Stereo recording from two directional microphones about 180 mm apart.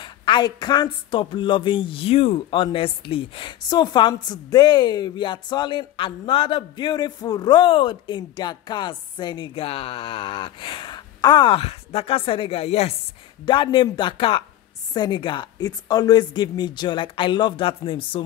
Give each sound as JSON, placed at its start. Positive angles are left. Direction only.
{"t": 0.0, "sound": "speech", "side_deg": 25}